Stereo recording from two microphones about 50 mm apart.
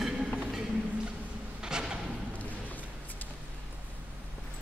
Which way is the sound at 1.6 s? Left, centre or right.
Centre.